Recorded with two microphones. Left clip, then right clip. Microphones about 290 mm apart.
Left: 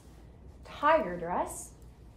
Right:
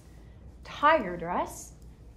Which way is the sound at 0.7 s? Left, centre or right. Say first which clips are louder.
Right 2 dB; right.